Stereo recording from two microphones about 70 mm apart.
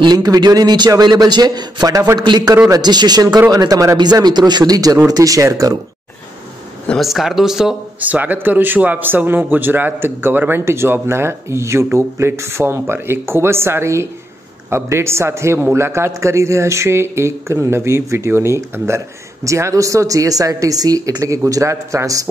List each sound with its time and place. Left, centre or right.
0.1 s a man's voice: right
2.1 s a man's voice: right
3.3 s speech: right
4.0 s speech: right
7.0 s speech: centre
8.0 s speech: right